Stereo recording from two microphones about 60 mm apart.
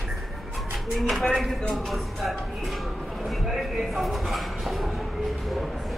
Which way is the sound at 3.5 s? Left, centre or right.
Centre.